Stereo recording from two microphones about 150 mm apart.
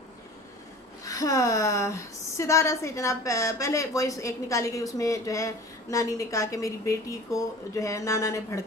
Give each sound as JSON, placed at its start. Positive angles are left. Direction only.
{"t": 1.0, "sound": "a woman's voice", "side_deg": 20}